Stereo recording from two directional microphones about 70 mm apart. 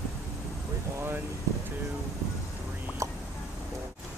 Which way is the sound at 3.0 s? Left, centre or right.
Right.